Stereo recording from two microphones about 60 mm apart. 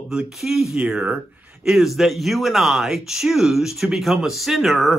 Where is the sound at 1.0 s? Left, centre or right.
Right.